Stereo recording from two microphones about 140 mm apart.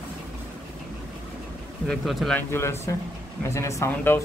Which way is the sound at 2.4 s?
20° left (ahead or behind).